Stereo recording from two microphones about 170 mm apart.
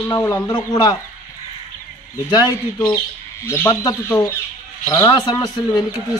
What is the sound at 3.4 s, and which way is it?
A man's voice, 15° left (ahead or behind).